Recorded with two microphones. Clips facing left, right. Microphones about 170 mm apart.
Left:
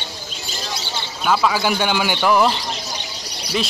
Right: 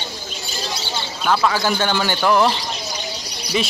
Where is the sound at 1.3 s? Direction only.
10° left (ahead or behind).